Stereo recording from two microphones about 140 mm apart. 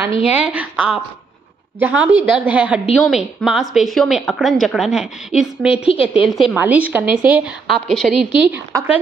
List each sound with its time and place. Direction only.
0.3 s a woman's voice: 10° right (ahead or behind)
5.9 s a woman's voice: 40° left (ahead or behind)
6.5 s a woman's voice: 10° right (ahead or behind)
8.5 s a woman's voice: 15° right (ahead or behind)